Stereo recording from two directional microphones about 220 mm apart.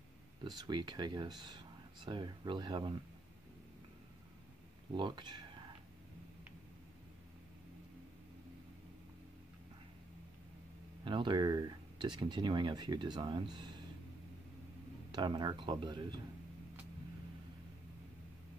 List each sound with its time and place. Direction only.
0.4 s speech: 20° right (ahead or behind)
4.9 s speech: 20° right (ahead or behind)
11.1 s speech: 20° right (ahead or behind)
15.0 s speech: 20° right (ahead or behind)